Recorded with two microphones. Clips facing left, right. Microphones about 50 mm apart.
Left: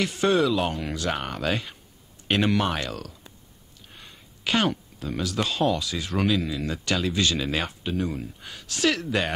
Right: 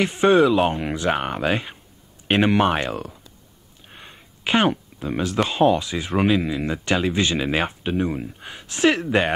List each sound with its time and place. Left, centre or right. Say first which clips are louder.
0.0 s speech: right 6 dB; right